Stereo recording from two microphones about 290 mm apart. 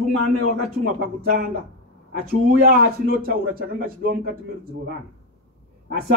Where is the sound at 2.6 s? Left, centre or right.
Right.